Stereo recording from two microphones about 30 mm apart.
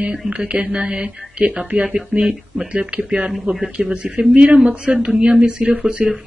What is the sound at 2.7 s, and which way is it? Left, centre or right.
Speech, right.